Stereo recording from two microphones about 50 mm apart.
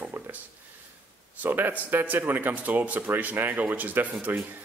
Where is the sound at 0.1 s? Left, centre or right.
Right.